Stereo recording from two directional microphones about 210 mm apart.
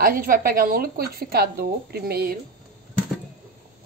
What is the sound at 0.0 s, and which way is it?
Speech, 45° right (ahead or behind).